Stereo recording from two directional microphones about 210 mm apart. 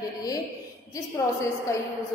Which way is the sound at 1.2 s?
10° left (ahead or behind).